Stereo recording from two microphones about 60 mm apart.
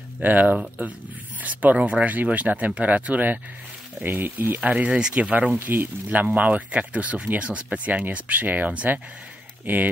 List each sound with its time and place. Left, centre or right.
0.2 s speech: right
4.6 s speech: right